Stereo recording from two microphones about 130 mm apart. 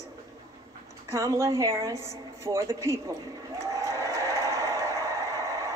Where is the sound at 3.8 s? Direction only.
25° right (ahead or behind).